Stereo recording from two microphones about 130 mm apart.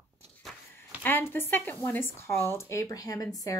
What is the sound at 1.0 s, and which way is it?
Speech, 15° left (ahead or behind).